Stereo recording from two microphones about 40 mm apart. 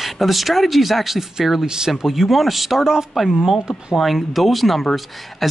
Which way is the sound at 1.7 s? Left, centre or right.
Centre.